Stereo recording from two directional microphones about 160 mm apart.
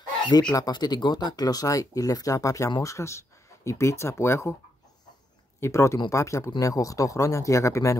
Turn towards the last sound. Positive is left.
turn(degrees=20)  # may be behind; listen again after turning